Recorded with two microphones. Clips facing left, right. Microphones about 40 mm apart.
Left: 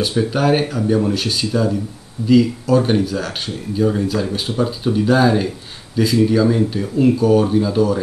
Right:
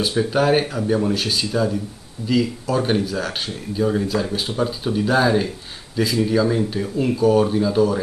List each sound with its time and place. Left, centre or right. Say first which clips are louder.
0.0 s speech: left 1 dB; centre